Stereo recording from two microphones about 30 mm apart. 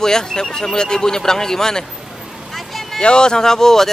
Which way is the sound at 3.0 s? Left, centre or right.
Left.